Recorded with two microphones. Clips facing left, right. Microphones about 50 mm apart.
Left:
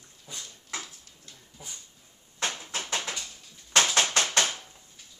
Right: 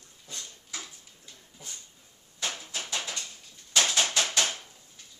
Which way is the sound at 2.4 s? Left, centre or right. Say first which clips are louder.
Left 3 dB; left.